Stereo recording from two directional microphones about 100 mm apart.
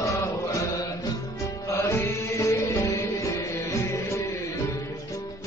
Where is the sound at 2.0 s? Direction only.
30° left (ahead or behind).